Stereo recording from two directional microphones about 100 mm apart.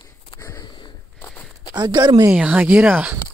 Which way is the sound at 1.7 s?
45° right (ahead or behind).